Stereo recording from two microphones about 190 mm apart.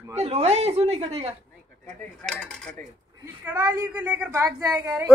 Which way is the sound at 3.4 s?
10° right (ahead or behind).